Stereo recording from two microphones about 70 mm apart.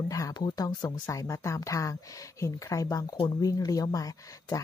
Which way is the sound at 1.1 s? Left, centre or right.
Left.